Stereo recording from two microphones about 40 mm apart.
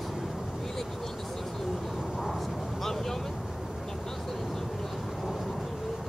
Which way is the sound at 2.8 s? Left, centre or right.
Centre.